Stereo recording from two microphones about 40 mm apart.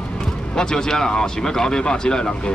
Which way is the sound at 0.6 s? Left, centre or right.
Centre.